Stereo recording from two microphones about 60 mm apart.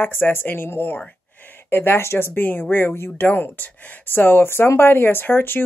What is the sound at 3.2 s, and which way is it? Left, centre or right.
Speech, left.